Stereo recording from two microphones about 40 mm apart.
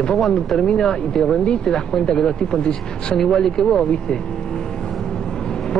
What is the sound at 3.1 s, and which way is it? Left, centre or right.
Speech, centre.